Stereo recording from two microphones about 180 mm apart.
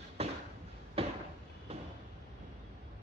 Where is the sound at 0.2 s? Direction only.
35° right (ahead or behind).